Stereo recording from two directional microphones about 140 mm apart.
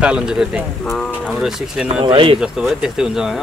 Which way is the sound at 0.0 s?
5° right (ahead or behind).